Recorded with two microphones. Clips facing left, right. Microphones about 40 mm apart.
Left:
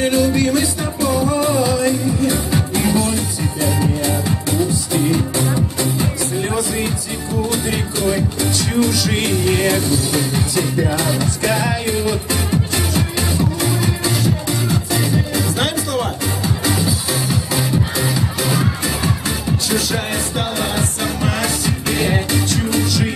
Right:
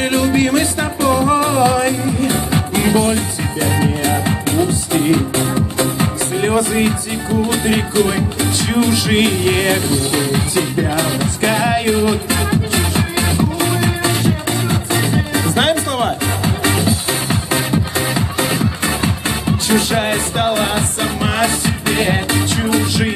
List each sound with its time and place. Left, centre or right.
0.0 s music: right
19.7 s music: right